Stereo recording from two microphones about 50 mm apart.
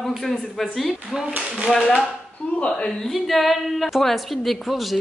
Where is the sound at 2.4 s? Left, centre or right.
Left.